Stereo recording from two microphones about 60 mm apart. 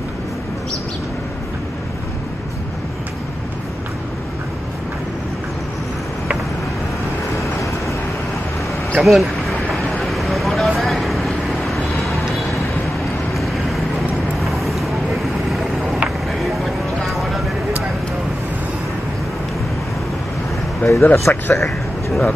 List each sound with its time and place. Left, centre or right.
8.9 s vehicle: centre
13.3 s vehicle: centre
16.3 s vehicle: centre
20.8 s speech: left
21.6 s speech: centre